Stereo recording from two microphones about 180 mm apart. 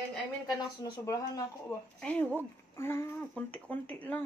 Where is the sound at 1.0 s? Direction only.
20° left (ahead or behind).